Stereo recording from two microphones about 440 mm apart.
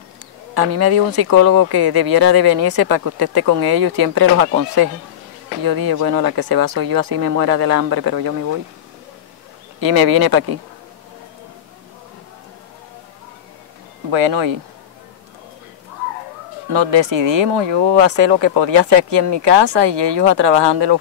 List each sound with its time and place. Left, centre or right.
0.6 s speech: right
9.8 s speech: right
14.1 s speech: right
16.6 s speech: right